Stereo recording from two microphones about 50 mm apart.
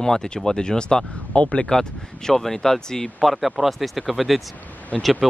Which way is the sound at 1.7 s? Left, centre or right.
Centre.